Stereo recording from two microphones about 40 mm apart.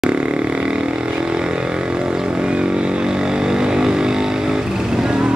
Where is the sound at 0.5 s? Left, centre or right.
Right.